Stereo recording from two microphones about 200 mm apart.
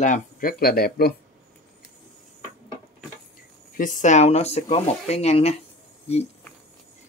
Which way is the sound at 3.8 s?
40° left (ahead or behind).